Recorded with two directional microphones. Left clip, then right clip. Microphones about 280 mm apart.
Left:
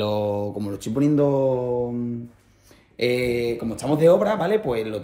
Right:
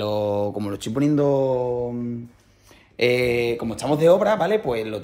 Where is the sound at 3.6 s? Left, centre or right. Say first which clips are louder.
Left 2 dB; centre.